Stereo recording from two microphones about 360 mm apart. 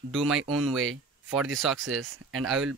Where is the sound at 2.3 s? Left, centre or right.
Centre.